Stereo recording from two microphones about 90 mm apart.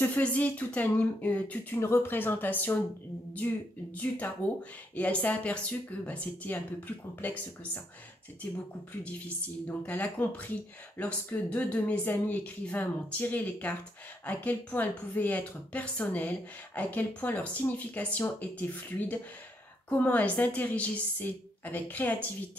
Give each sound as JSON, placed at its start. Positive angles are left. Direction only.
{"t": 0.0, "sound": "a woman's voice", "side_deg": 20}
{"t": 9.7, "sound": "a woman's voice", "side_deg": 15}